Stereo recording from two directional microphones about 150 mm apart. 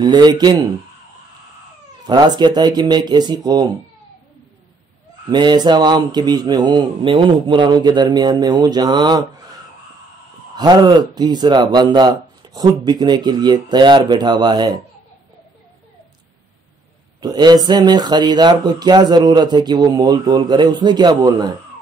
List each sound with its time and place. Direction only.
0.0 s speech: 30° right (ahead or behind)
2.0 s speech: 30° right (ahead or behind)
5.3 s speech: 30° right (ahead or behind)
10.5 s speech: 25° right (ahead or behind)
17.2 s speech: 25° right (ahead or behind)